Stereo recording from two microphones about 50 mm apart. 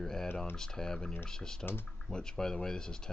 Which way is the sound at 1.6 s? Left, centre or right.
Left.